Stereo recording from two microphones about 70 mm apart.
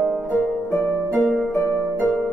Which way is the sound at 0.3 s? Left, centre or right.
Left.